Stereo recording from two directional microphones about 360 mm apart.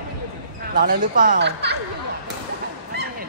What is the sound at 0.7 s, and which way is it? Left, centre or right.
Speech, right.